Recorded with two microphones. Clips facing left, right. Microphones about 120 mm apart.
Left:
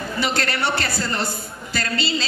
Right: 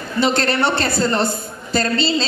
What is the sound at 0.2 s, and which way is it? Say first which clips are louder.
A man's voice: right 7 dB; 25° right (ahead or behind).